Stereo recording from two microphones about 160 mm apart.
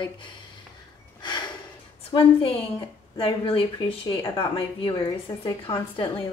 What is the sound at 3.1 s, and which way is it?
A woman's voice, 35° left (ahead or behind).